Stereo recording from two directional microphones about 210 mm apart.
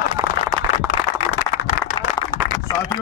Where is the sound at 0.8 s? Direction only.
35° left (ahead or behind).